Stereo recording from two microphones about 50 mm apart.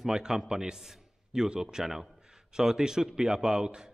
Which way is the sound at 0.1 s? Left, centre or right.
Centre.